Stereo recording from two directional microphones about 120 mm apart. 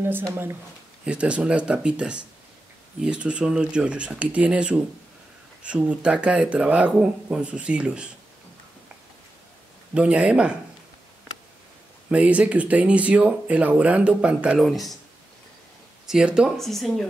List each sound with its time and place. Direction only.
0.3 s speech: 20° right (ahead or behind)
1.0 s speech: 10° right (ahead or behind)
9.9 s speech: 10° right (ahead or behind)
12.1 s speech: 10° right (ahead or behind)
16.1 s speech: 5° right (ahead or behind)